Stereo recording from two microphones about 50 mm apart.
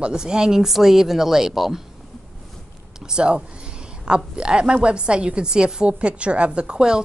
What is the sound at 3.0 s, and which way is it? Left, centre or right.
A woman's voice, centre.